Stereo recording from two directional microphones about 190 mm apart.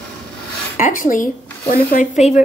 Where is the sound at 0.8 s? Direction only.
45° left (ahead or behind).